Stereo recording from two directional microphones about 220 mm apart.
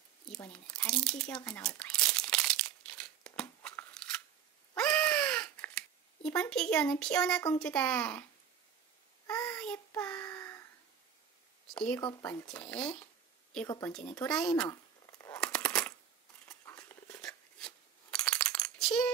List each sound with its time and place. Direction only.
0.3 s speech: 5° left (ahead or behind)
1.4 s crumpling: 5° left (ahead or behind)
4.7 s crow: 5° left (ahead or behind)
7.5 s speech: 5° left (ahead or behind)
9.3 s child singing: 5° left (ahead or behind)
11.7 s a sound: 5° left (ahead or behind)
12.0 s speech: 15° left (ahead or behind)
13.7 s speech: 15° left (ahead or behind)
13.9 s speech: 5° left (ahead or behind)
14.7 s a sound: 15° left (ahead or behind)
15.4 s machine gun: 5° left (ahead or behind)
16.4 s a sound: 10° left (ahead or behind)